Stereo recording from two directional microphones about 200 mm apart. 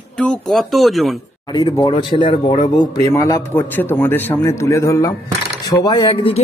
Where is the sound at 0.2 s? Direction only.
Centre (ahead or behind).